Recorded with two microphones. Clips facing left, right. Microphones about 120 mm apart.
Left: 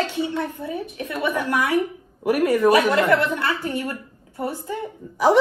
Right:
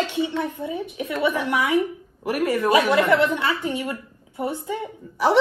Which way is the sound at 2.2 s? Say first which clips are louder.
Left 4 dB; centre (ahead or behind).